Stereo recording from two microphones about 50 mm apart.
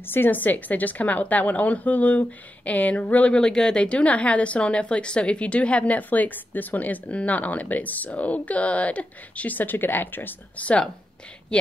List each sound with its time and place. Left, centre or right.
0.0 s a woman's voice: left
3.3 s a woman's voice: centre; by 10.3 s left